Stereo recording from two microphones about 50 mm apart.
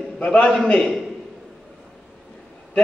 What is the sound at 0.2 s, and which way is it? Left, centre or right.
Speech, centre.